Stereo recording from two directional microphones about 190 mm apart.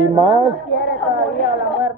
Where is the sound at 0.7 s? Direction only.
70° left (ahead or behind).